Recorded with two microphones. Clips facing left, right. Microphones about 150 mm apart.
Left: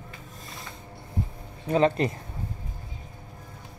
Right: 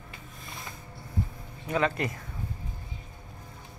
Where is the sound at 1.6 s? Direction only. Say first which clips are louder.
Left 6 dB; 30° left (ahead or behind).